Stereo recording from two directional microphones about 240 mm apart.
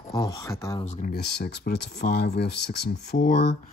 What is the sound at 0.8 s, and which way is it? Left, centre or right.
Speech, left.